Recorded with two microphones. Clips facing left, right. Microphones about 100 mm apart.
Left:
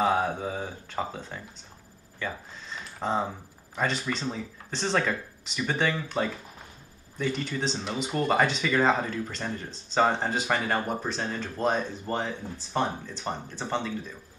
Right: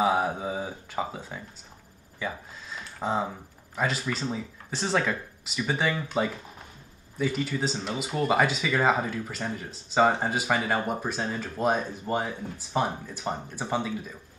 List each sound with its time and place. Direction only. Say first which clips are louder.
0.0 s speech: even; 10° right (ahead or behind)